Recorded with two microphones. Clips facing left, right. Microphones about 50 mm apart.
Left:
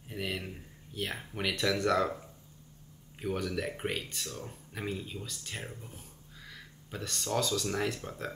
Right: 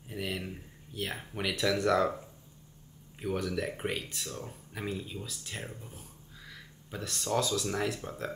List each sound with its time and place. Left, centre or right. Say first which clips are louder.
0.1 s a sound: even; centre
0.9 s speech: even; centre
3.2 s speech: right 1 dB; centre